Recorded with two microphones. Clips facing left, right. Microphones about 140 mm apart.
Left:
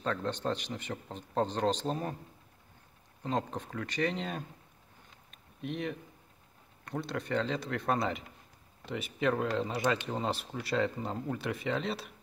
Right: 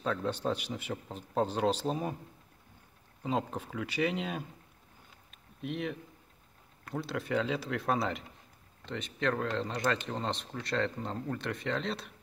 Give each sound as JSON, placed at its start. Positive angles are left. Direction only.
{"t": 0.0, "sound": "speech", "side_deg": -5}
{"t": 3.2, "sound": "speech", "side_deg": -5}
{"t": 5.3, "sound": "a sound", "side_deg": 0}
{"t": 6.8, "sound": "speech", "side_deg": 0}